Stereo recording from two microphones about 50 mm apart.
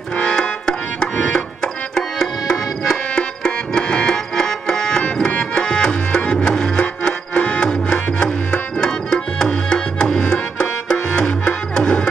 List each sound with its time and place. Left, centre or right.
0.1 s music: centre